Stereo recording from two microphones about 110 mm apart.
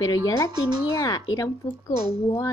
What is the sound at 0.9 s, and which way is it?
Speech, 35° left (ahead or behind).